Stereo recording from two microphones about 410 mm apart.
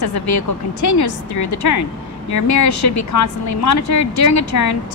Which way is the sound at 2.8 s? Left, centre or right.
Left.